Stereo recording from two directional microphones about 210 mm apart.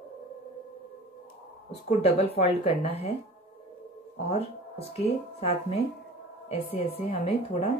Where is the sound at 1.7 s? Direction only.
30° left (ahead or behind).